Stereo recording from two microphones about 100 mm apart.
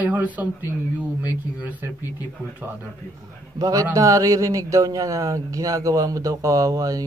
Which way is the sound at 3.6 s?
35° right (ahead or behind).